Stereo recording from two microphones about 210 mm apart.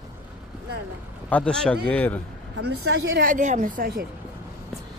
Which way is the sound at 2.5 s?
90° right.